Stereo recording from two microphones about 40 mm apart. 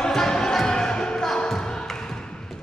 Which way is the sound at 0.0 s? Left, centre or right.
Centre.